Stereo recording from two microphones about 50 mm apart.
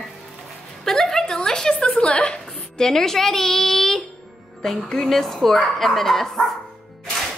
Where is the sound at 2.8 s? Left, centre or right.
Centre.